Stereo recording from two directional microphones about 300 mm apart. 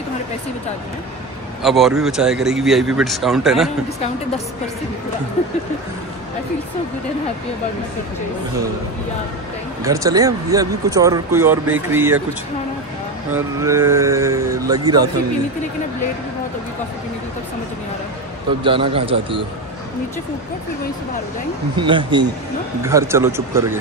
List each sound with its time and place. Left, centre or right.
1.6 s speech: centre
9.8 s speech: centre
13.3 s speech: centre
18.6 s speech: centre
21.7 s speech: centre